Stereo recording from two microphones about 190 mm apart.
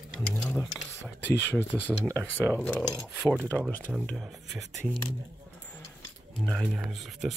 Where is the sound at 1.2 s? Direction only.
65° left (ahead or behind).